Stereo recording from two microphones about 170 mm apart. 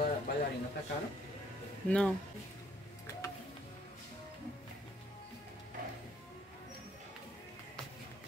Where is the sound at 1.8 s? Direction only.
5° left (ahead or behind).